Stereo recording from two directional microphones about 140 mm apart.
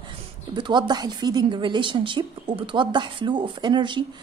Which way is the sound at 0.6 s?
30° right (ahead or behind).